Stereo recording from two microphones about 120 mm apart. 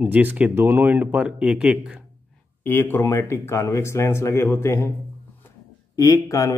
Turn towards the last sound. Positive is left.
turn(degrees=25)  # may be behind; listen again after turning